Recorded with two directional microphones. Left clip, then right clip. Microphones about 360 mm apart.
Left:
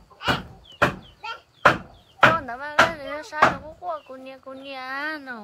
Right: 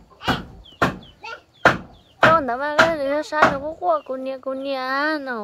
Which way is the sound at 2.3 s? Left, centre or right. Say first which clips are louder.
Right 5 dB; centre.